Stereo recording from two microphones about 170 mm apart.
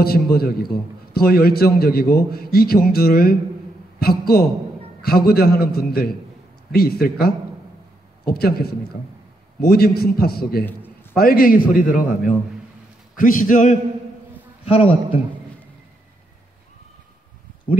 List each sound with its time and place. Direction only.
0.0 s a man's voice: 65° left (ahead or behind)
10.6 s a sound: 10° left (ahead or behind)
11.1 s a man's voice: 60° left (ahead or behind)
14.6 s a man's voice: 35° left (ahead or behind)